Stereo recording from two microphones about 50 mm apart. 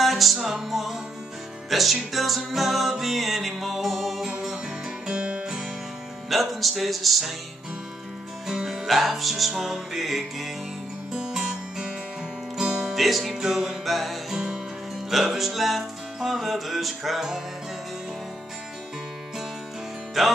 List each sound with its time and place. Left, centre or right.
0.0 s music: centre
5.0 s music: right
6.3 s music: centre
8.5 s music: centre
8.8 s music: centre
12.9 s music: centre
20.2 s music: centre